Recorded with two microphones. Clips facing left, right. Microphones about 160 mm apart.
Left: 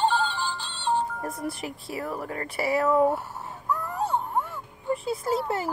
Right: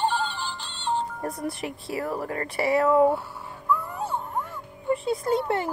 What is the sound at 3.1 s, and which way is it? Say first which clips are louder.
Cat: right 1 dB; 45° left (ahead or behind).